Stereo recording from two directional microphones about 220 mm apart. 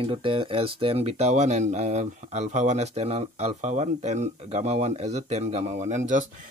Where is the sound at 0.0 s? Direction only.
25° right (ahead or behind).